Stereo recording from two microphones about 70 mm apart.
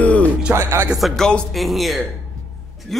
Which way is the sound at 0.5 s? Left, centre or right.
Right.